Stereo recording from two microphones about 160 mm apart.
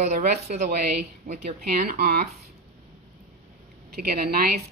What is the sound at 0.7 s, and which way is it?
A woman's voice, 75° right (ahead or behind).